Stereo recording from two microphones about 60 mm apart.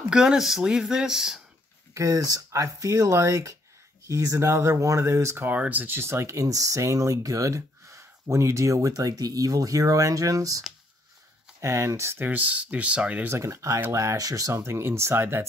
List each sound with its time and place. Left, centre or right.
0.1 s speech: centre
2.0 s speech: right
5.6 s speech: right
5.9 s speech: right
11.6 s speech: right
12.3 s speech: right
13.4 s speech: right
14.5 s speech: right